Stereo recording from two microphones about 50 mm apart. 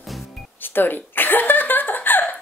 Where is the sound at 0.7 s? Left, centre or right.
Left.